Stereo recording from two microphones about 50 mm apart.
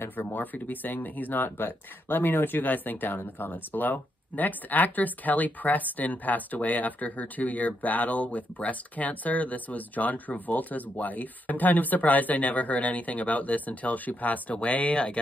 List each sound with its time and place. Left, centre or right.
0.0 s speech: left